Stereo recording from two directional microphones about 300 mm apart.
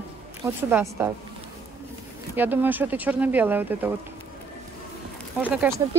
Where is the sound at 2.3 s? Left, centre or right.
Centre.